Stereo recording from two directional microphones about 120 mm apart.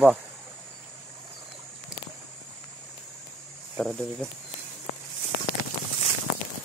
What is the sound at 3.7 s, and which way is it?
Speech, 10° left (ahead or behind).